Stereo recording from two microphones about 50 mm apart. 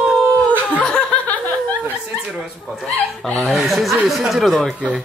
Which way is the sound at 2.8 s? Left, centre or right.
Centre.